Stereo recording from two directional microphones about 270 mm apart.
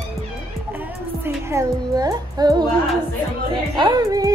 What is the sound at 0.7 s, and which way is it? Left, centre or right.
Speech, centre.